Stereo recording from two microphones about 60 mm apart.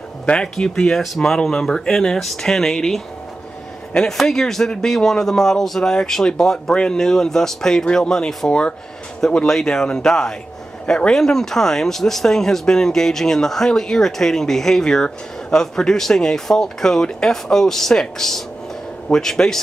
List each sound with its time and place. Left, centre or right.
0.3 s speech: centre